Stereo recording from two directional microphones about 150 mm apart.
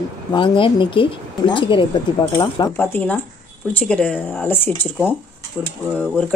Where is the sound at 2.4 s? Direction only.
25° left (ahead or behind).